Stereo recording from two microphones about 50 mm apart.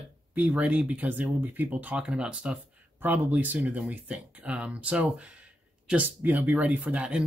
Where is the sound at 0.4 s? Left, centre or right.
Right.